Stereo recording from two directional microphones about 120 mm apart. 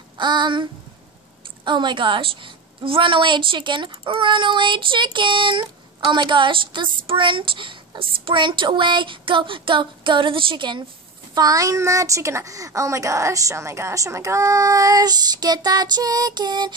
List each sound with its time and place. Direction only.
0.2 s a sound: 40° right (ahead or behind)
1.6 s a woman's voice: 40° right (ahead or behind)
11.3 s speech: 30° right (ahead or behind)